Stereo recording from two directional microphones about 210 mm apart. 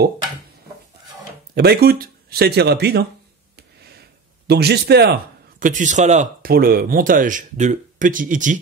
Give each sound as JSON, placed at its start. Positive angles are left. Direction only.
{"t": 1.5, "sound": "speech", "side_deg": -50}
{"t": 3.5, "sound": "a sound", "side_deg": -50}
{"t": 4.5, "sound": "a man's voice", "side_deg": -50}
{"t": 5.6, "sound": "speech", "side_deg": -35}